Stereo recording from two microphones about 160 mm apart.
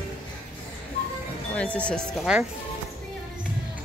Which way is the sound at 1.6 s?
5° left (ahead or behind).